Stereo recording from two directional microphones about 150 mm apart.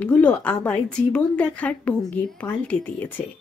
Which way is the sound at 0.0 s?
10° left (ahead or behind).